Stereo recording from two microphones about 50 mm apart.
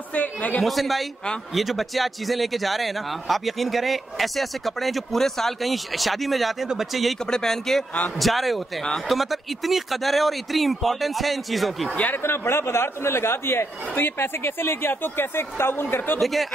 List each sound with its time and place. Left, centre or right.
0.1 s a man's voice: left
0.6 s a man's voice: centre
7.2 s a man's voice: centre
11.9 s a man's voice: left
12.2 s a man's voice: left
16.2 s a man's voice: centre